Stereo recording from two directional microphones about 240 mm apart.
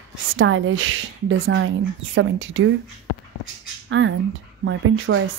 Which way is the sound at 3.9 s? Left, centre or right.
Right.